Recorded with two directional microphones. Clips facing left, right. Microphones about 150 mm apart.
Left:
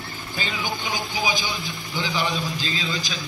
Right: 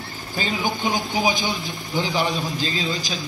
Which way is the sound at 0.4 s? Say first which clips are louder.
Right 5 dB; 40° right (ahead or behind).